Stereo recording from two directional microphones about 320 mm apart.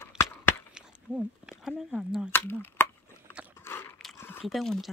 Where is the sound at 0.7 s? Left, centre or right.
Centre.